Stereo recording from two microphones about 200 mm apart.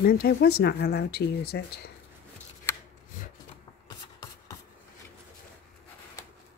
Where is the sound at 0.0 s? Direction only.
45° left (ahead or behind).